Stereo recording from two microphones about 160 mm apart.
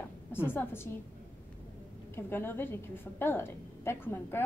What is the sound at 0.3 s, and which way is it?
Speech, 15° left (ahead or behind).